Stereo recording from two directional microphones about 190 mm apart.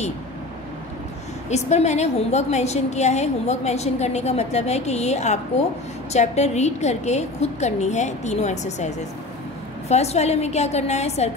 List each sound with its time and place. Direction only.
1.5 s a woman's voice: 35° left (ahead or behind)